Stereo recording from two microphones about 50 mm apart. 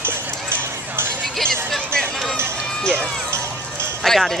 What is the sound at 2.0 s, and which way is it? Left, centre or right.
Run, centre.